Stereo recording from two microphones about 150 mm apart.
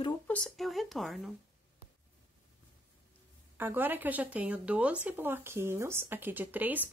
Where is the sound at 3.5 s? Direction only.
15° right (ahead or behind).